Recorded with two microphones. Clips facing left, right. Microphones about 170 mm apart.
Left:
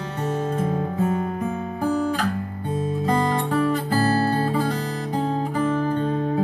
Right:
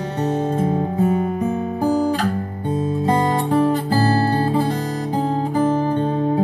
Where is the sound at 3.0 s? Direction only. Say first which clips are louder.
Right 3 dB; 30° right (ahead or behind).